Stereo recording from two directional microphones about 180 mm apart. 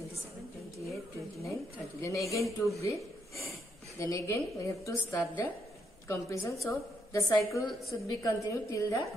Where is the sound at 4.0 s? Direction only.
15° left (ahead or behind).